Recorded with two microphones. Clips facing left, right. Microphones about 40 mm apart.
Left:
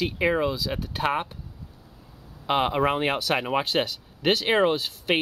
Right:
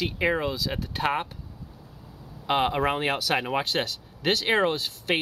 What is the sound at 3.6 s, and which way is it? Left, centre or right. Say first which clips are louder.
Speech: left 2 dB; centre.